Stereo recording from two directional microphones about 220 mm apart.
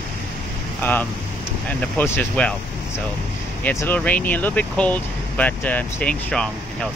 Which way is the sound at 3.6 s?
10° left (ahead or behind).